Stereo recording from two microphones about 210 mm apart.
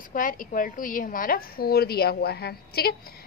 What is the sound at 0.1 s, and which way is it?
A woman's voice, 40° left (ahead or behind).